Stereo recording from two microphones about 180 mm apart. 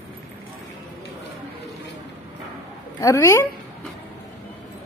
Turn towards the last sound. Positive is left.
turn(degrees=15)  # may be behind; listen again after turning